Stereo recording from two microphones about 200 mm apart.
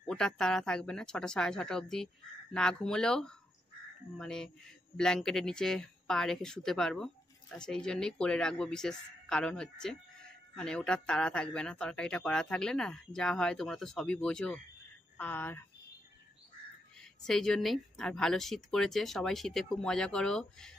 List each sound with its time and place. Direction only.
0.0 s speech: 5° left (ahead or behind)
17.0 s speech: centre (ahead or behind)